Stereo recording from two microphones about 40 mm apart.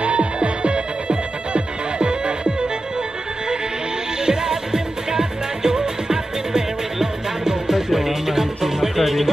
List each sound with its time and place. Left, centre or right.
0.0 s music: right
4.3 s music: centre